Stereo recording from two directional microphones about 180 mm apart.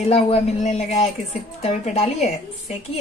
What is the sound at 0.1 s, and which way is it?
Speech, 35° left (ahead or behind).